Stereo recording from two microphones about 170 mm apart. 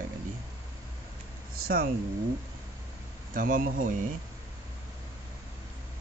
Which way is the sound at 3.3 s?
55° right (ahead or behind).